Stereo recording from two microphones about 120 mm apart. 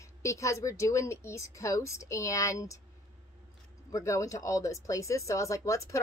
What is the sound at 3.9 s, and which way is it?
A woman's voice, 25° left (ahead or behind).